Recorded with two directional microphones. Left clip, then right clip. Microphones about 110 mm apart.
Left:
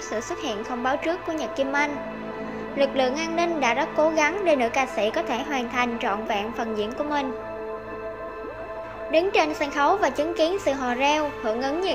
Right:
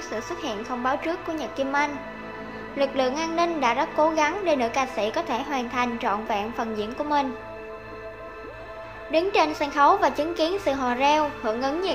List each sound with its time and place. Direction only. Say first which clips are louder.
0.1 s a woman's voice: left 2 dB; 25° left (ahead or behind)
9.1 s a woman's voice: left 1 dB; 15° left (ahead or behind)